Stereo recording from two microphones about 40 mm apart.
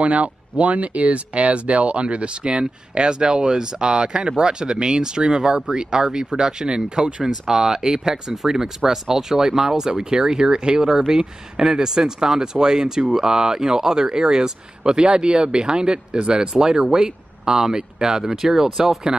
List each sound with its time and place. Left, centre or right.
0.0 s speech: right; by 8.2 s centre
8.3 s speech: centre